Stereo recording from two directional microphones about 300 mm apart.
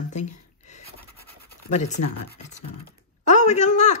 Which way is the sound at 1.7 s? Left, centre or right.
Left.